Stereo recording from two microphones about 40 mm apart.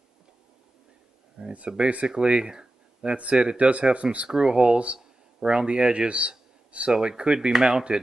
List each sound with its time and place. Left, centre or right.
1.4 s speech: centre
1.8 s speech: right
4.3 s speech: right
4.9 s a sound: centre
5.7 s speech: right